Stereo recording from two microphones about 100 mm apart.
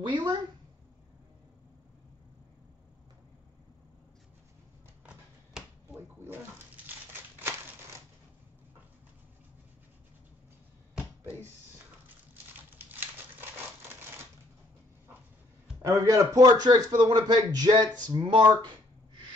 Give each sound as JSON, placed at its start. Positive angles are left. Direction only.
{"t": 0.0, "sound": "a woman's voice", "side_deg": -50}
{"t": 5.9, "sound": "bathtub", "side_deg": -20}
{"t": 12.7, "sound": "crumpling", "side_deg": -20}
{"t": 15.9, "sound": "speech", "side_deg": -30}